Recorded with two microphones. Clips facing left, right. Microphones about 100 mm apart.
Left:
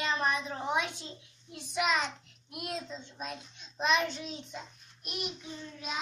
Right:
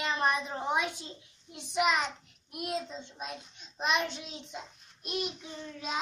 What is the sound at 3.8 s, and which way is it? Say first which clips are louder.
A child's voice: left 2 dB; 15° right (ahead or behind).